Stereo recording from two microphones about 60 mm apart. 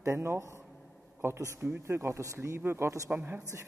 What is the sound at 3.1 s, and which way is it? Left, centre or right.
Speech, right.